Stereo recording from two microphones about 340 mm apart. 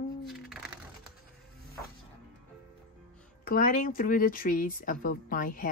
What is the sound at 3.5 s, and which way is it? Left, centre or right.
Speech, left.